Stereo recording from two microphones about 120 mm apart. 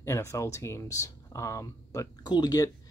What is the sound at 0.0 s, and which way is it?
Speech, 25° left (ahead or behind).